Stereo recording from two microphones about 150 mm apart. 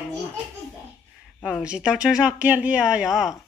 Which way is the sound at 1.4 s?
5° right (ahead or behind).